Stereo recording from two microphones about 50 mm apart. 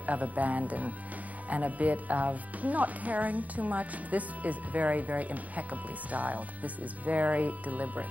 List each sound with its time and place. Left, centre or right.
0.0 s speech: right